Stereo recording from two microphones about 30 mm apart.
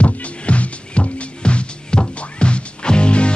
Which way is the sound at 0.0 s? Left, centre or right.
Left.